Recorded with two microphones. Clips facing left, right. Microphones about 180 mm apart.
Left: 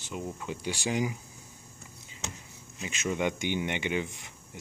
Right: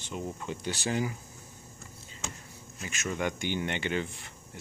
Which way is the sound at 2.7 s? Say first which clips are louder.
Left 3 dB; 15° left (ahead or behind).